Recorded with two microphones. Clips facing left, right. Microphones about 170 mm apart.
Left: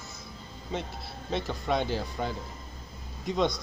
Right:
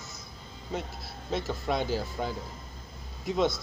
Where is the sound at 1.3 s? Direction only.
Centre (ahead or behind).